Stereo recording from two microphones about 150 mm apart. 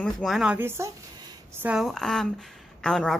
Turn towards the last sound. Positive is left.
turn(degrees=5)  # may be behind; listen again after turning